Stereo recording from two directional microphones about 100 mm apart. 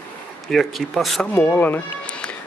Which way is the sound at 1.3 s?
15° left (ahead or behind).